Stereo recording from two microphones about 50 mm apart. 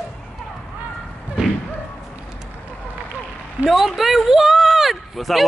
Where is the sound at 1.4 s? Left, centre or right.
Centre.